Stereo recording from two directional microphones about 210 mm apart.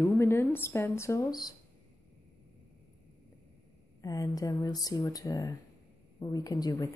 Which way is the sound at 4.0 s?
15° left (ahead or behind).